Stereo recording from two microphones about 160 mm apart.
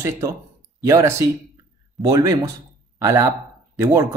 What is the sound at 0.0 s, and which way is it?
A man's voice, 20° right (ahead or behind).